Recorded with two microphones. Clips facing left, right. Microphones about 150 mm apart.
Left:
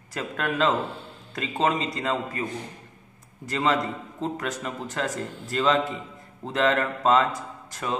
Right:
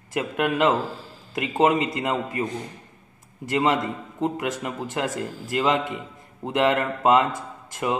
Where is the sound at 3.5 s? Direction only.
20° right (ahead or behind).